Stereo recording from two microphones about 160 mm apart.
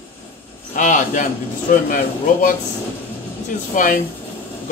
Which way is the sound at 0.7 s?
50° left (ahead or behind).